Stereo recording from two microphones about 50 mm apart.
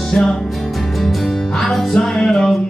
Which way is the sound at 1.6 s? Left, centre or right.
Centre.